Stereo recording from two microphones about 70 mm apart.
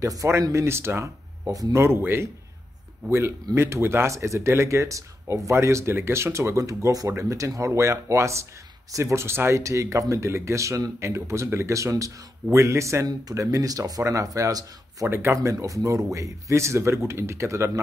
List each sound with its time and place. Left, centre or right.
0.0 s speech: right
1.5 s a man's voice: right
1.8 s a man's voice: right
15.0 s speech: right